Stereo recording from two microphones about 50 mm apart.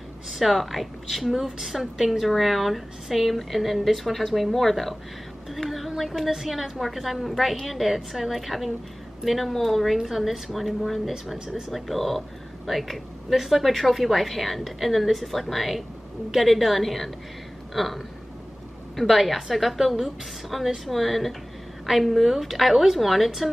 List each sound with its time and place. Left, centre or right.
0.3 s a woman's voice: centre
11.3 s speech: centre
11.7 s a woman's voice: centre